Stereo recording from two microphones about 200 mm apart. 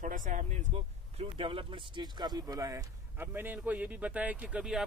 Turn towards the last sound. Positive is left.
turn(degrees=-5)  # may be behind; listen again after turning